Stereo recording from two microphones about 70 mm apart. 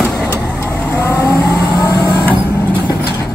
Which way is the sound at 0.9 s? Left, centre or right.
Left.